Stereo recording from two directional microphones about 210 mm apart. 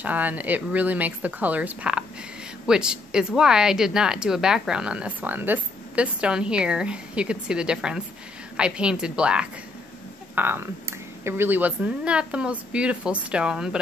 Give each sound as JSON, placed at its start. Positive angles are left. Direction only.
{"t": 0.0, "sound": "speech", "side_deg": -5}